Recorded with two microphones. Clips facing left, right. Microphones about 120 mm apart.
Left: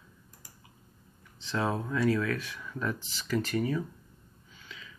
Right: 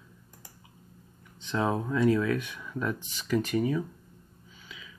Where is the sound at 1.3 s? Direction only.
20° right (ahead or behind).